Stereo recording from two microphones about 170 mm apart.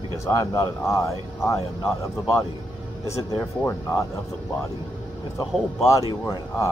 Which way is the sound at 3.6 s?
15° left (ahead or behind).